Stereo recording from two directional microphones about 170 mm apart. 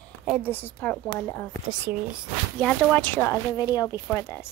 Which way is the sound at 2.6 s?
5° left (ahead or behind).